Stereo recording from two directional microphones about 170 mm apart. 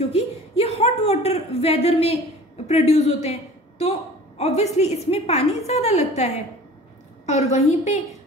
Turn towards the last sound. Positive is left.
turn(degrees=40)  # may be behind; listen again after turning